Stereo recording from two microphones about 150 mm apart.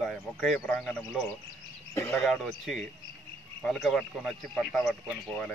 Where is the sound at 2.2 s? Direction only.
Centre (ahead or behind).